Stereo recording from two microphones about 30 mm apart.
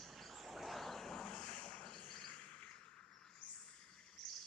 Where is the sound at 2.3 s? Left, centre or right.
Left.